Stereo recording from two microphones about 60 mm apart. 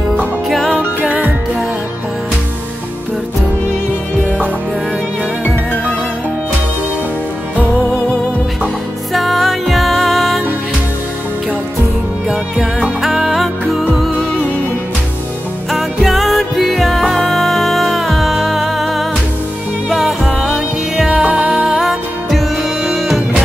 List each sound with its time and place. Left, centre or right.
1.0 s music: right
9.1 s music: centre
13.0 s music: centre
15.7 s music: centre
21.1 s music: centre